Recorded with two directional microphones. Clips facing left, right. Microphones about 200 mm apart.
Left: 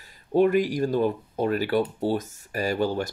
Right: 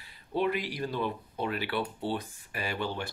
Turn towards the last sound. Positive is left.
turn(degrees=40)  # may be behind; listen again after turning